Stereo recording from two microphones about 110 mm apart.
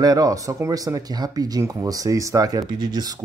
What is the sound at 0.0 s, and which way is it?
Speech, 35° right (ahead or behind).